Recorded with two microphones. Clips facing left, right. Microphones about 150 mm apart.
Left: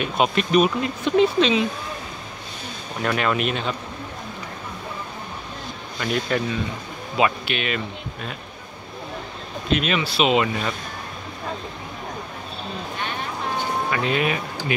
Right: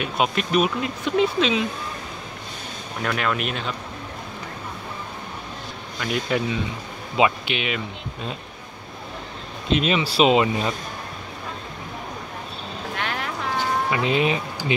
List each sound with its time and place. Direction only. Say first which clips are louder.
0.0 s speech: left 2 dB; 5° right (ahead or behind)
3.0 s speech: left 2 dB; 5° left (ahead or behind)
5.9 s speech: left 1 dB; 10° right (ahead or behind)
9.8 s speech: right 4 dB; 30° right (ahead or behind)
10.4 s speech: right 2 dB; 20° right (ahead or behind)
12.9 s vehicle: right 3 dB; 90° right
13.8 s speech: right 1 dB; 20° right (ahead or behind)